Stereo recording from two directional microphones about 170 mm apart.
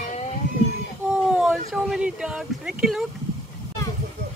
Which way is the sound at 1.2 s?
5° right (ahead or behind).